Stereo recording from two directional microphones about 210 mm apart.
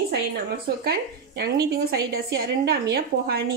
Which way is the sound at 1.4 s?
50° right (ahead or behind).